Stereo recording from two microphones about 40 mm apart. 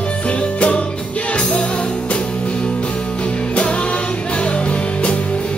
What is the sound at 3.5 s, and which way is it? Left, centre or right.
Music, left.